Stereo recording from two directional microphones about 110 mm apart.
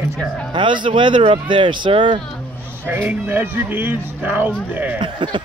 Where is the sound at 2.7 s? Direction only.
20° right (ahead or behind).